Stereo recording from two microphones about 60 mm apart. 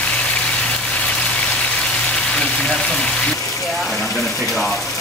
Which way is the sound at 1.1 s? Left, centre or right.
Centre.